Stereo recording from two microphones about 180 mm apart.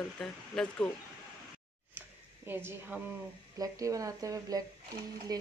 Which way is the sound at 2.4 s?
10° right (ahead or behind).